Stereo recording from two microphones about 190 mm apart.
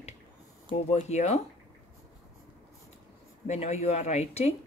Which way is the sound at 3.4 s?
35° left (ahead or behind).